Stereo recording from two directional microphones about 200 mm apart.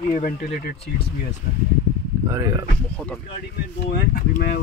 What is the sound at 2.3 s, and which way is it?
Speech, 15° right (ahead or behind).